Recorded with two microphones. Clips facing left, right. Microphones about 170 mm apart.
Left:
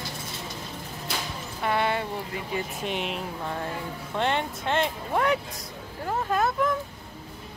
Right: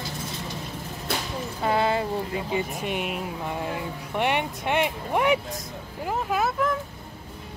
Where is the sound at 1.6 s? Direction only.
25° right (ahead or behind).